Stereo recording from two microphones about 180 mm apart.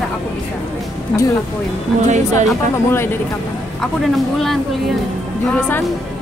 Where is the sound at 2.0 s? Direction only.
40° right (ahead or behind).